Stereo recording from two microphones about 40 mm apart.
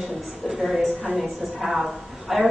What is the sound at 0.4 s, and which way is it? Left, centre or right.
Speech, centre.